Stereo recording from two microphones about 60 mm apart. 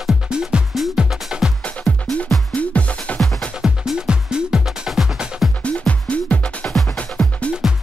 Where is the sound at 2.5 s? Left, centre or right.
Left.